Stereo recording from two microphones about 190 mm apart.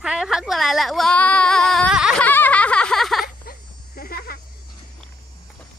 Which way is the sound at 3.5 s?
50° left (ahead or behind).